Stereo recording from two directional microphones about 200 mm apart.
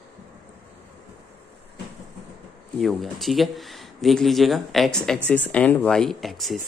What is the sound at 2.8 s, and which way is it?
Speech, centre (ahead or behind).